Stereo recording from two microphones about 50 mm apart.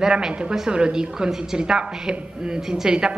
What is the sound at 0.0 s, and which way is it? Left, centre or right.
A woman's voice, centre.